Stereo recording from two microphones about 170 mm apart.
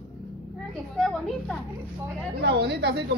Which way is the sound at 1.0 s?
5° left (ahead or behind).